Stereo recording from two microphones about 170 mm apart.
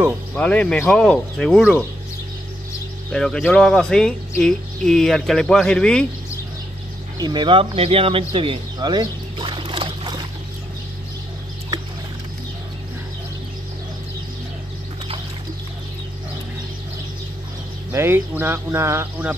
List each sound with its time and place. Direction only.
0.4 s speech: 10° left (ahead or behind)
3.1 s speech: 5° left (ahead or behind)
7.2 s speech: 25° right (ahead or behind)
17.9 s speech: 15° right (ahead or behind)